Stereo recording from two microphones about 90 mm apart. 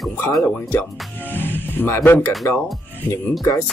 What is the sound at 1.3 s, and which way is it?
Speech, 20° left (ahead or behind).